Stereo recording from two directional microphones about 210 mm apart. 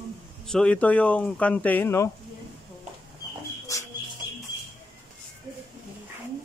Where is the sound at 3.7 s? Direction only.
15° left (ahead or behind).